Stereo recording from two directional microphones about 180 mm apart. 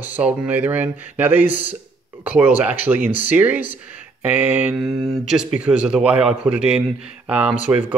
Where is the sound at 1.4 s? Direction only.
45° left (ahead or behind).